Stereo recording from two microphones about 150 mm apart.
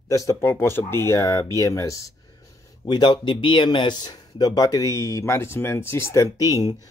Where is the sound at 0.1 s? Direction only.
20° left (ahead or behind).